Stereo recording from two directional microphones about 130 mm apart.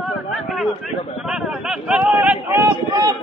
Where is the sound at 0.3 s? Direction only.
Centre (ahead or behind).